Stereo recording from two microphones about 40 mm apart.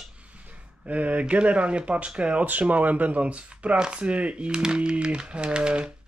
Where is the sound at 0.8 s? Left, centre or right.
Right.